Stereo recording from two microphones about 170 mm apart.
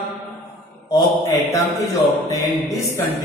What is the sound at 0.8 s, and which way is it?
Speech, 20° left (ahead or behind).